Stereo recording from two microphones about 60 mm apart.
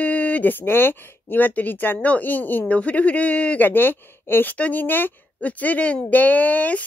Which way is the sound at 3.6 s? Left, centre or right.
Left.